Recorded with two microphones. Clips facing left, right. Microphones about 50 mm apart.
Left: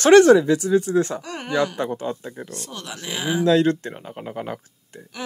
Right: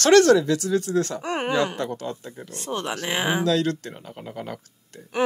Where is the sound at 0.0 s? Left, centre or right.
Centre.